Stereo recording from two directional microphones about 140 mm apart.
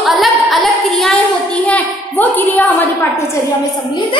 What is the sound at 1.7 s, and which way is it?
A woman's voice, 10° left (ahead or behind).